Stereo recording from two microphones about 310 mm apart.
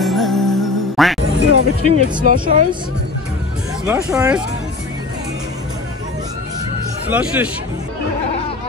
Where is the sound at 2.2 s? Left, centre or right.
Right.